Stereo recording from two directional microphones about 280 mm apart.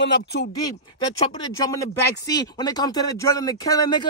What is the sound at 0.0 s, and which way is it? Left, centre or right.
Speech, left.